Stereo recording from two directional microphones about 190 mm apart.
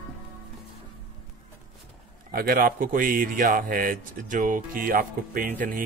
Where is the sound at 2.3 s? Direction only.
50° right (ahead or behind).